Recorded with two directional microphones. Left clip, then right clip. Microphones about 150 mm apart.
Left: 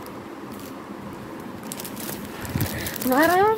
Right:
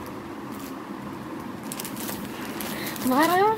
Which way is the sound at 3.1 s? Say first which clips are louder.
Left 2 dB; 35° left (ahead or behind).